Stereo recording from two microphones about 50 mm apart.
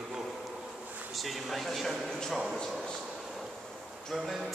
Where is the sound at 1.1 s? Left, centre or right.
Centre.